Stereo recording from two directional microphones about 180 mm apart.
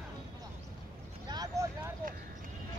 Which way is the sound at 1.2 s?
20° right (ahead or behind).